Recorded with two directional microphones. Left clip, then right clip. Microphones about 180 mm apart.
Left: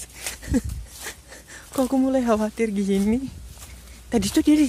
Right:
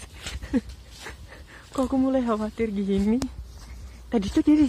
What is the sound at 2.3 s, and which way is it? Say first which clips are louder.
Speech: left 4 dB; 45° left (ahead or behind).